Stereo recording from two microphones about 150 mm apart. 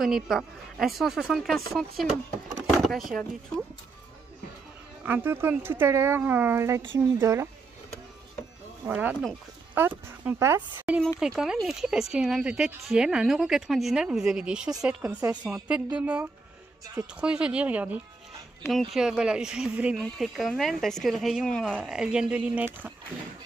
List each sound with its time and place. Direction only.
0.0 s speech: centre (ahead or behind)
5.0 s speech: 15° right (ahead or behind)
8.8 s speech: 10° right (ahead or behind)
11.1 s speech: 5° right (ahead or behind)